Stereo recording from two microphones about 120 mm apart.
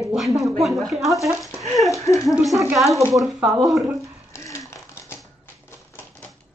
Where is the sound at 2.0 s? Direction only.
25° left (ahead or behind).